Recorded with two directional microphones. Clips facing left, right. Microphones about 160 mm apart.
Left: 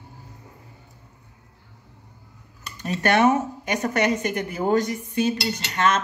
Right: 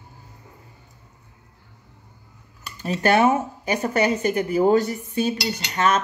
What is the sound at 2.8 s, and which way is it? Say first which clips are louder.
Speech: right 1 dB; 30° right (ahead or behind).